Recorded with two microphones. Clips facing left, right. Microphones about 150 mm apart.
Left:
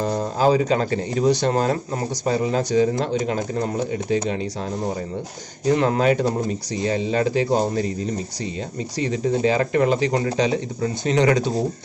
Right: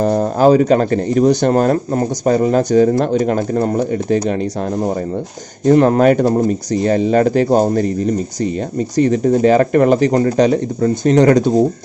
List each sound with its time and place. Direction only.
0.0 s speech: 55° right (ahead or behind)